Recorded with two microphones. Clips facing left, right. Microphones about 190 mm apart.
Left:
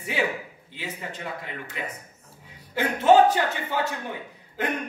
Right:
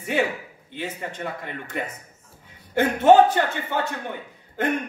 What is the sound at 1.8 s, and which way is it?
A man's voice, 55° right (ahead or behind).